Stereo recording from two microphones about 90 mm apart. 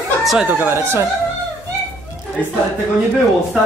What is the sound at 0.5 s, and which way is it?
Speech, 20° right (ahead or behind).